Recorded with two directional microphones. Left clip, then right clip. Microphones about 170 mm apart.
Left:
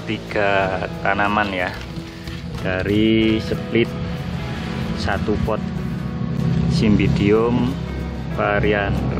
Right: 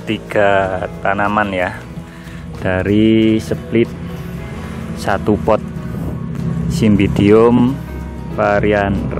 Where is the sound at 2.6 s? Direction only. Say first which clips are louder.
Right 5 dB; 40° right (ahead or behind).